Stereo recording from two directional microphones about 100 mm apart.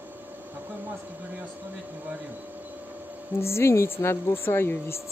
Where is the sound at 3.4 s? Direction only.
25° left (ahead or behind).